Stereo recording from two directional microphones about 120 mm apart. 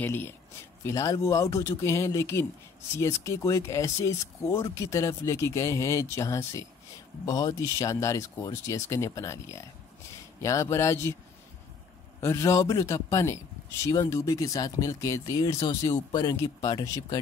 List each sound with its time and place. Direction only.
0.0 s a man's voice: 15° left (ahead or behind)
12.2 s a man's voice: 25° left (ahead or behind)